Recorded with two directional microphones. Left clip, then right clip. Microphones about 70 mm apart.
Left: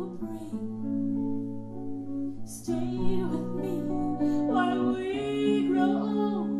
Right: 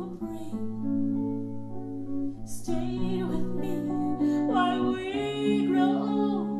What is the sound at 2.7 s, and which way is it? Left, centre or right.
Music, right.